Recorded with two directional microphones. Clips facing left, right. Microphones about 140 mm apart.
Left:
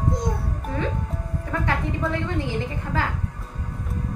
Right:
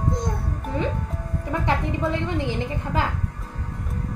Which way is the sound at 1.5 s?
20° right (ahead or behind).